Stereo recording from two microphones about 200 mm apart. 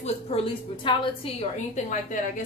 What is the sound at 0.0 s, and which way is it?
A woman's voice, 30° left (ahead or behind).